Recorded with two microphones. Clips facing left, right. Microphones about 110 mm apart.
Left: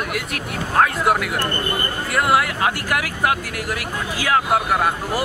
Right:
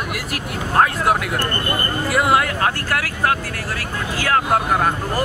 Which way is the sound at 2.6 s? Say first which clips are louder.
Even; 15° left (ahead or behind).